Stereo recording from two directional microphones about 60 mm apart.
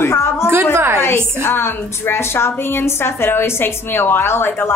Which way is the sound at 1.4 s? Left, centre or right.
Left.